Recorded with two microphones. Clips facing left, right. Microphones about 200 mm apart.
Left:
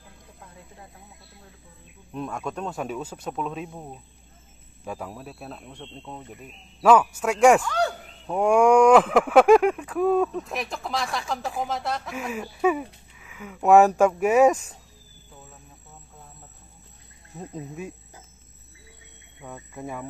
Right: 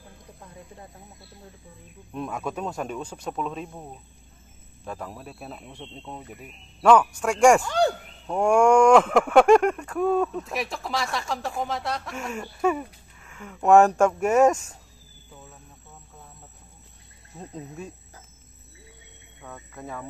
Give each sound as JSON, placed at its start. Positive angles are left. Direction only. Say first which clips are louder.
{"t": 2.1, "sound": "speech", "louder": "even", "side_deg": 0}
{"t": 6.8, "sound": "speech", "louder": "even", "side_deg": 5}
{"t": 7.6, "sound": "a sound", "louder": "right 3 dB", "side_deg": -30}
{"t": 8.3, "sound": "speech", "louder": "left 1 dB", "side_deg": 0}
{"t": 17.4, "sound": "speech", "louder": "left 2 dB", "side_deg": 5}
{"t": 19.4, "sound": "speech", "louder": "left 3 dB", "side_deg": 15}